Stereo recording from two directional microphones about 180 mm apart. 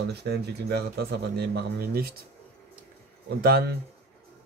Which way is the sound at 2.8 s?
60° right (ahead or behind).